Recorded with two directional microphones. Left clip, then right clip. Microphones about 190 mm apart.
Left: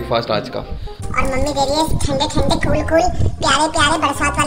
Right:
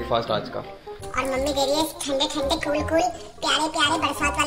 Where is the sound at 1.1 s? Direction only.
5° left (ahead or behind).